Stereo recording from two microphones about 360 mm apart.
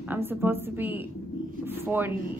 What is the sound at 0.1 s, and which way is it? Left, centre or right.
Speech, centre.